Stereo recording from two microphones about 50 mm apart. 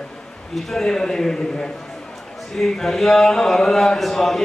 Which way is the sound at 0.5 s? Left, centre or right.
Centre.